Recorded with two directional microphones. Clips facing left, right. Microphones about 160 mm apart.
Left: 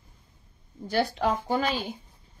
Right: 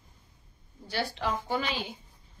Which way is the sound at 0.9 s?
50° left (ahead or behind).